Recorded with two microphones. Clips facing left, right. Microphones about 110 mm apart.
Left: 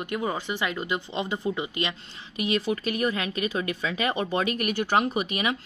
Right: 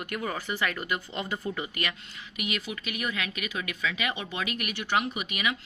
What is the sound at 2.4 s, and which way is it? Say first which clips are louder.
Speech: left 8 dB; 35° left (ahead or behind).